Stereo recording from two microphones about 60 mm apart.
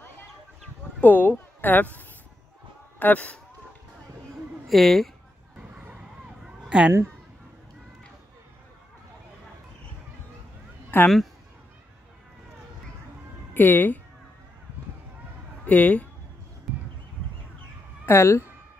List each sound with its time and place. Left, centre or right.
1.0 s a woman's voice: left
3.0 s speech: left
4.6 s speech: centre
6.2 s a sound: centre
10.9 s speech: left
13.5 s a woman's voice: left
15.6 s speech: left
16.7 s a sound: centre
18.0 s a woman's voice: left